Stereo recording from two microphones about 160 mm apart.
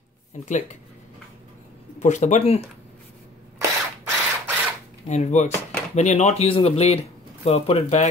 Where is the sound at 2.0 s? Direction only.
45° left (ahead or behind).